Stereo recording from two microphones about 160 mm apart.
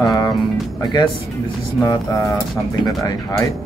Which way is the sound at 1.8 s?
20° left (ahead or behind).